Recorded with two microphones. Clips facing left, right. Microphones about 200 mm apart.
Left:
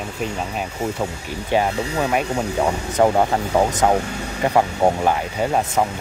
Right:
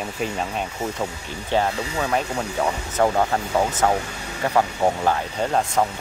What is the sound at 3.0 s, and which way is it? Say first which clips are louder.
Speech: left 4 dB; 20° left (ahead or behind).